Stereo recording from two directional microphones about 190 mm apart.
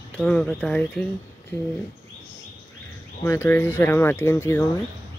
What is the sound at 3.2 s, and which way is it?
Speech, 10° left (ahead or behind).